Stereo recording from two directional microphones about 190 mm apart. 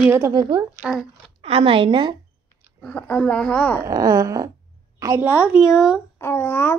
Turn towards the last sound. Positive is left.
turn(degrees=10)  # may be behind; listen again after turning